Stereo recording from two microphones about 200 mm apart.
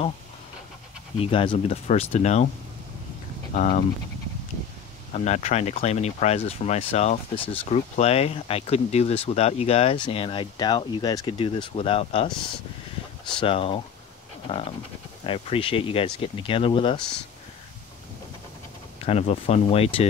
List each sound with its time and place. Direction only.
1.1 s speech: 25° left (ahead or behind)
3.5 s speech: 40° left (ahead or behind)
5.1 s speech: 35° left (ahead or behind)
13.3 s speech: 25° left (ahead or behind)
18.9 s speech: 30° left (ahead or behind)